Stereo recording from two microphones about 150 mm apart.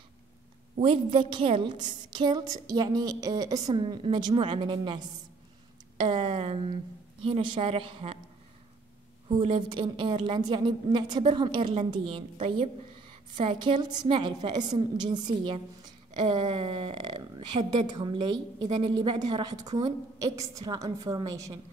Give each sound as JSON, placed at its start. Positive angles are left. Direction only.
{"t": 0.7, "sound": "a woman's voice", "side_deg": -35}
{"t": 5.9, "sound": "a sound", "side_deg": -35}
{"t": 7.2, "sound": "a woman's voice", "side_deg": -35}
{"t": 9.3, "sound": "a woman's voice", "side_deg": -35}